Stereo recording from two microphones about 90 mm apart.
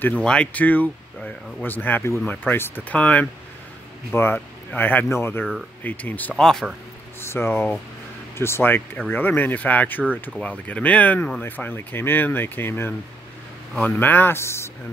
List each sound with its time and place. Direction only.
0.0 s speech: 10° left (ahead or behind); by 7.5 s 25° left (ahead or behind)
7.5 s speech: 15° left (ahead or behind)
8.4 s speech: 30° left (ahead or behind)